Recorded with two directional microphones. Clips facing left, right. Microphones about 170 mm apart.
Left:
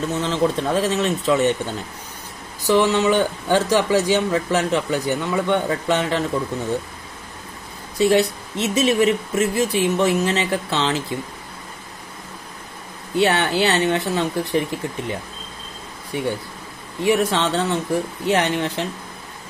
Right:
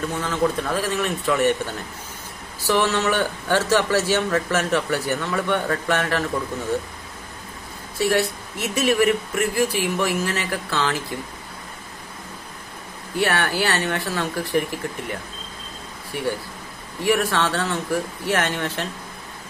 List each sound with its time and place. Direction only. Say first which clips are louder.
0.1 s speech: left 3 dB; 25° left (ahead or behind)
8.0 s speech: left 4 dB; 20° left (ahead or behind)
13.1 s speech: left 4 dB; 20° left (ahead or behind)
16.1 s speech: left 2 dB; 20° left (ahead or behind)